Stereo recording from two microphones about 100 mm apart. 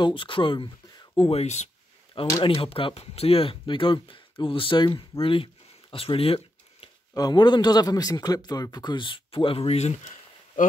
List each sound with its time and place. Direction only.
0.0 s speech: 60° left (ahead or behind)
1.1 s speech: 75° left (ahead or behind)
2.4 s speech: 65° left (ahead or behind)
7.2 s speech: 45° left (ahead or behind); by 9.9 s 85° left